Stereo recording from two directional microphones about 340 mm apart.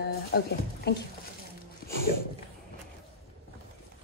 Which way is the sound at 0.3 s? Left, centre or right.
Left.